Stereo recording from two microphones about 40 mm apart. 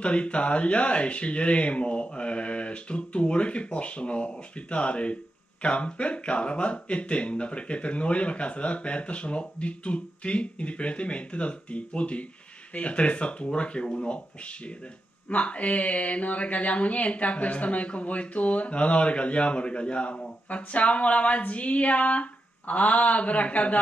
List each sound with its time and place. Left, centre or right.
0.0 s speech: left